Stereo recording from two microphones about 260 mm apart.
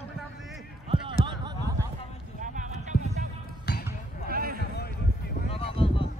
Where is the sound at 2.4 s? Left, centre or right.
Right.